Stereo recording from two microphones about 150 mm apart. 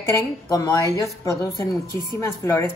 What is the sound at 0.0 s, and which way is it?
Speech, 20° left (ahead or behind).